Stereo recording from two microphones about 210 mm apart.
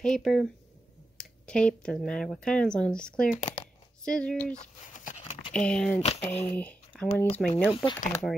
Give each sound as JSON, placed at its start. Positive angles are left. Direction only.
{"t": 0.0, "sound": "speech", "side_deg": 0}
{"t": 3.3, "sound": "speech", "side_deg": 30}
{"t": 4.0, "sound": "speech", "side_deg": 5}
{"t": 7.7, "sound": "speech", "side_deg": 25}
{"t": 8.1, "sound": "speech", "side_deg": 5}